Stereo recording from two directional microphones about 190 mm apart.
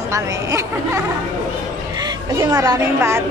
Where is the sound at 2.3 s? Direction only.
15° right (ahead or behind).